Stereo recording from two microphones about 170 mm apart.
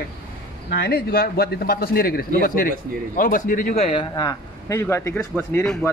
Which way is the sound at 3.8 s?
30° left (ahead or behind).